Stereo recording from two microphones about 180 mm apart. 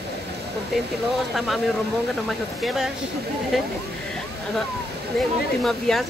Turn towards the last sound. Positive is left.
turn(degrees=0)  # may be behind; listen again after turning